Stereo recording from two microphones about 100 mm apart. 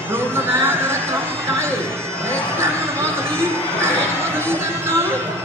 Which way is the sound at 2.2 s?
25° right (ahead or behind).